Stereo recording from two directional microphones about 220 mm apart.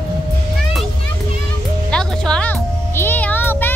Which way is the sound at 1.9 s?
5° left (ahead or behind).